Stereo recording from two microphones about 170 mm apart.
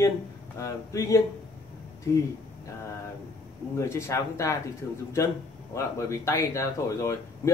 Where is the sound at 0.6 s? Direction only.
20° left (ahead or behind).